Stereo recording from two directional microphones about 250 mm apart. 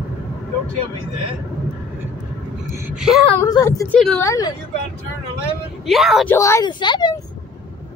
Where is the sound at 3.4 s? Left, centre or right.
Centre.